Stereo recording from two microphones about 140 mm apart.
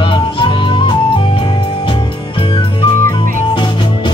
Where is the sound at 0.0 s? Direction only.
35° left (ahead or behind).